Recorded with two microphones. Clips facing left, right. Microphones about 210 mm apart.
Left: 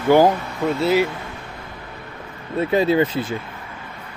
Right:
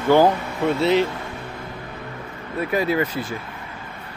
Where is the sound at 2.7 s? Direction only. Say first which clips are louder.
Left 4 dB; 25° left (ahead or behind).